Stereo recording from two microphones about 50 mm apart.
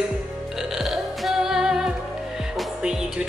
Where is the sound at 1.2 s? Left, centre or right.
Centre.